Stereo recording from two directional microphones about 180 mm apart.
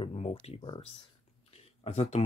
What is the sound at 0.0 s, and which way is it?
Speech, 30° left (ahead or behind).